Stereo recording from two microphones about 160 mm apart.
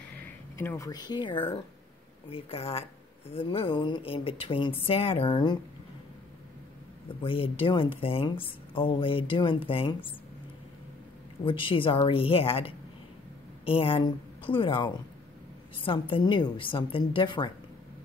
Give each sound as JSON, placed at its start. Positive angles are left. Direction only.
{"t": 0.2, "sound": "a woman's voice", "side_deg": 15}
{"t": 7.2, "sound": "a woman's voice", "side_deg": 35}
{"t": 11.4, "sound": "a woman's voice", "side_deg": 30}